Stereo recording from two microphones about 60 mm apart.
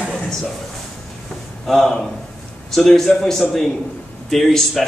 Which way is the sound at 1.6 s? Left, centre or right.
Centre.